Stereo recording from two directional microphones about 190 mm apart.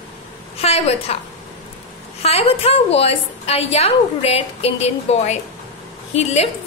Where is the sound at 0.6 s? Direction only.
35° left (ahead or behind).